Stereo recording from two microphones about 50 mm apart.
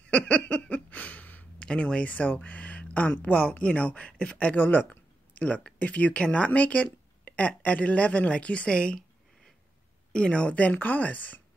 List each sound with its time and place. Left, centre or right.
0.0 s a sound: left
1.6 s a woman's voice: centre
4.6 s a woman's voice: left; by 9.0 s centre
10.1 s a woman's voice: left